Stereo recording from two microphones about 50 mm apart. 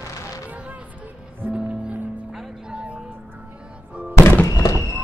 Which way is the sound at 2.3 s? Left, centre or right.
Centre.